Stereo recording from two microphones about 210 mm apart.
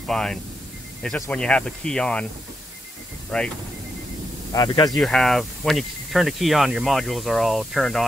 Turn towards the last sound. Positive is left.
turn(degrees=0)  # may be behind; listen again after turning